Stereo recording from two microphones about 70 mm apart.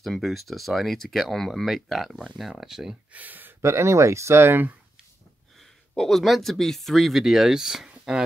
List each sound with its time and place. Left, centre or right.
0.0 s speech: centre
3.1 s speech: right
3.6 s speech: right
5.9 s speech: centre